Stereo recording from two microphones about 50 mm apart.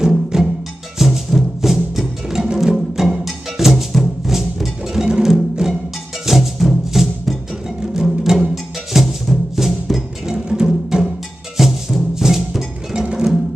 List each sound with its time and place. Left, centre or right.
0.0 s music: centre
6.2 s music: centre
10.2 s music: centre
11.5 s cowbell: centre
13.0 s music: centre